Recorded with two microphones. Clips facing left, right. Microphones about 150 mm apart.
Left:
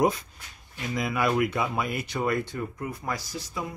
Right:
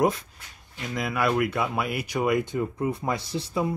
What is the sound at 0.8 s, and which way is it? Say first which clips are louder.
Speech: right 1 dB; centre (ahead or behind).